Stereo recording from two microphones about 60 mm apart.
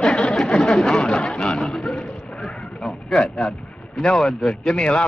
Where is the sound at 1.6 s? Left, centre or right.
Centre.